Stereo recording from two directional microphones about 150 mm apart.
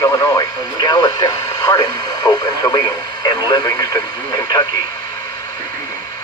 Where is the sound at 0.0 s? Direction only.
20° left (ahead or behind).